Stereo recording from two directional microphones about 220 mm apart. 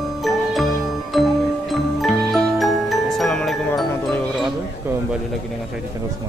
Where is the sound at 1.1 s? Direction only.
Centre (ahead or behind).